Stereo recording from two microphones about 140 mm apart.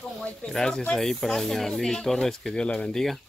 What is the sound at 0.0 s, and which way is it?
Speech, 5° left (ahead or behind).